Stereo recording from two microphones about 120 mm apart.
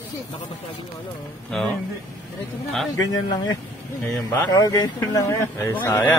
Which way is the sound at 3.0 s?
35° left (ahead or behind).